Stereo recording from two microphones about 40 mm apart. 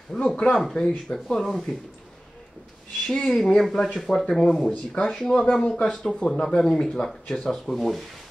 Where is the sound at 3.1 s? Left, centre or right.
Centre.